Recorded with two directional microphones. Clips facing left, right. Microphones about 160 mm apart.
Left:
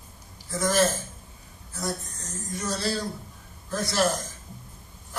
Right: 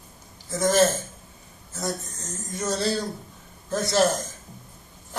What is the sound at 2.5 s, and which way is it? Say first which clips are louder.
Speech: right 4 dB; 20° right (ahead or behind).